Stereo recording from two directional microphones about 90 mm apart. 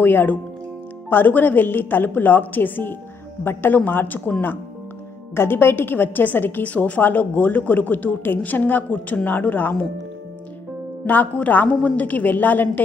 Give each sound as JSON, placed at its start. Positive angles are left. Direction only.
{"t": 0.0, "sound": "a woman's voice", "side_deg": 20}
{"t": 11.1, "sound": "a woman's voice", "side_deg": 20}